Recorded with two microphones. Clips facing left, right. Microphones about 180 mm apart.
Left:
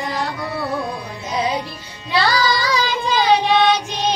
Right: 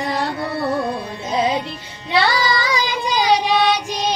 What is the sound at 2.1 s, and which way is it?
Child singing, 15° right (ahead or behind).